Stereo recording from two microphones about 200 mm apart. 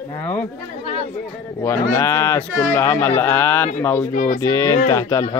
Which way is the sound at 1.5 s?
15° left (ahead or behind).